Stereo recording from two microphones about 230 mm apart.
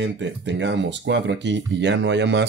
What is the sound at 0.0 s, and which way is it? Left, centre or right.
Speech, right.